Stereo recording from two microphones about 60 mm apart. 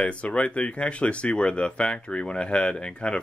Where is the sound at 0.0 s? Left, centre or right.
Centre.